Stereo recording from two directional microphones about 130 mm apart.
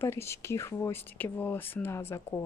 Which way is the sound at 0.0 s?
20° left (ahead or behind).